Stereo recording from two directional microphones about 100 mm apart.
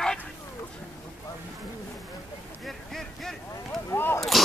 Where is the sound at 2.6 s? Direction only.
Centre (ahead or behind).